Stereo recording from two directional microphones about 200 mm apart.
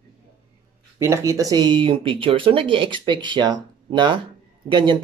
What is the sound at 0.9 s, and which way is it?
Speech, 15° right (ahead or behind).